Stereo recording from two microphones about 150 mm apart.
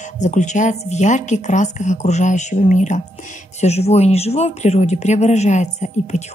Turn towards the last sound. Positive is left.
turn(degrees=50)  # may be behind; listen again after turning